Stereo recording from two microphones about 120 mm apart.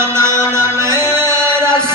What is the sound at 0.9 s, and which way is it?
Music, 30° left (ahead or behind).